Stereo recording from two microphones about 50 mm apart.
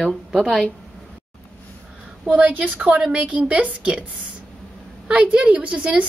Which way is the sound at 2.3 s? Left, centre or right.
Right.